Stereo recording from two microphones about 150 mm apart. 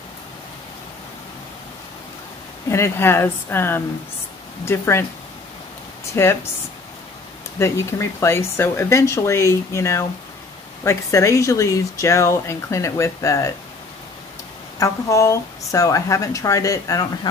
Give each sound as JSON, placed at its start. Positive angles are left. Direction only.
{"t": 2.7, "sound": "speech", "side_deg": 15}
{"t": 6.2, "sound": "speech", "side_deg": 15}
{"t": 7.5, "sound": "speech", "side_deg": 20}
{"t": 14.8, "sound": "speech", "side_deg": 20}